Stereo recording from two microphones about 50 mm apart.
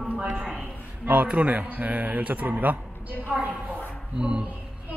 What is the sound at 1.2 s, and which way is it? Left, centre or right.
A woman's voice, right.